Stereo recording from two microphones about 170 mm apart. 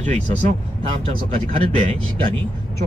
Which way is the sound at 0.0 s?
40° right (ahead or behind).